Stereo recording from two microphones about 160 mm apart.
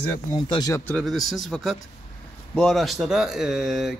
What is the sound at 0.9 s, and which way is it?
Speech, 5° left (ahead or behind).